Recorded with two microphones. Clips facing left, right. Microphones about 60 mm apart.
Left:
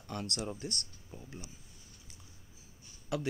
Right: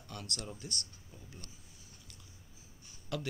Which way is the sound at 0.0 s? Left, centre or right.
Left.